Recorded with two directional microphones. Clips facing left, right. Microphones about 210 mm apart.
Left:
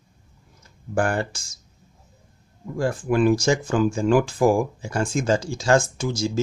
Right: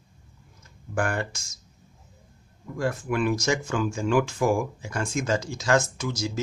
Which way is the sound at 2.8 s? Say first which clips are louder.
Left 5 dB; 30° left (ahead or behind).